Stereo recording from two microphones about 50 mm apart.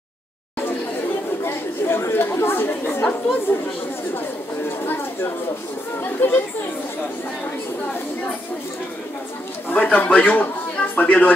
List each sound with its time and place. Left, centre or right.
1.4 s speech: left
4.6 s a sound: left
6.0 s speech: left
9.8 s a man's voice: left